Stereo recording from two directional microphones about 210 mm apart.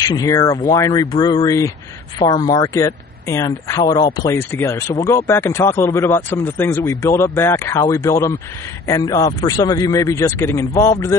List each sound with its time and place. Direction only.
0.1 s speech: 15° left (ahead or behind)